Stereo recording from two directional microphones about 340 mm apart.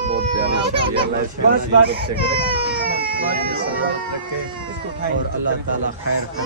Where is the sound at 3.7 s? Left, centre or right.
Right.